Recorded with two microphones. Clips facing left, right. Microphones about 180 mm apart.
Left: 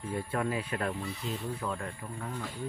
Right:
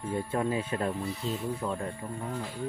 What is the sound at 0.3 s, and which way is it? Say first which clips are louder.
Speech: right 2 dB; 25° right (ahead or behind).